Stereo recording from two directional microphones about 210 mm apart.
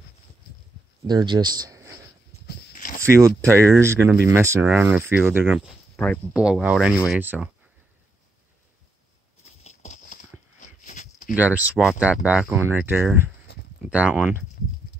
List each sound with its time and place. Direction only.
1.0 s speech: 20° right (ahead or behind)
2.4 s a sound: 40° left (ahead or behind)
3.0 s speech: 15° right (ahead or behind)
9.6 s clip-clop: 35° left (ahead or behind)
10.6 s a sound: 35° left (ahead or behind)
11.3 s speech: 5° right (ahead or behind)